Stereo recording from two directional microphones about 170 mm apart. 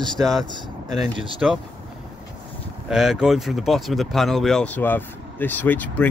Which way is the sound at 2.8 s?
5° right (ahead or behind).